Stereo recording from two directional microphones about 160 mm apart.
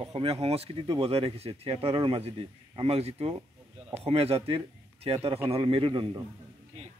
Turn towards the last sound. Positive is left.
turn(degrees=-30)  # may be behind; listen again after turning